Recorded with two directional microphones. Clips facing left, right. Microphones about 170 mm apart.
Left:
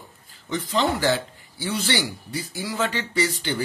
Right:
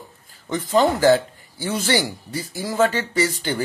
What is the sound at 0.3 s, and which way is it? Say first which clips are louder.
A man's voice: right 6 dB; 45° right (ahead or behind).